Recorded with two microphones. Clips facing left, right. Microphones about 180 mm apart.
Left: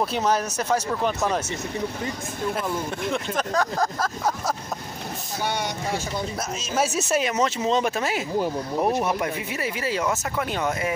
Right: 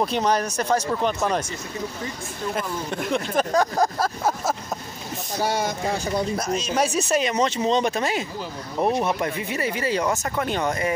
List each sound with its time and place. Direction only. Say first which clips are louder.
0.0 s speech: right 1 dB; 5° left (ahead or behind)
3.3 s speech: right 5 dB; 15° right (ahead or behind)
6.3 s speech: right 3 dB; 5° left (ahead or behind)